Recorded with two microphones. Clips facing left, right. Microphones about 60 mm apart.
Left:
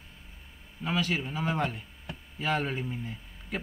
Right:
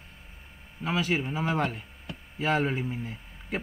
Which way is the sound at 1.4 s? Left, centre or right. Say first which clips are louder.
Right 2 dB; centre.